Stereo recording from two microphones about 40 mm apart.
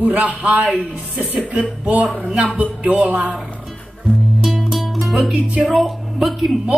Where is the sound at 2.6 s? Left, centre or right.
Right.